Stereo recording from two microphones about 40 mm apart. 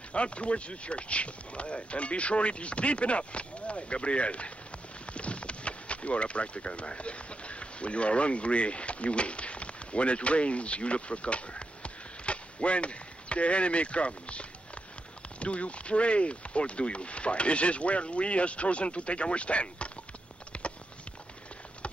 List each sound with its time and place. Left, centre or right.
0.1 s speech: left
20.5 s clip-clop: left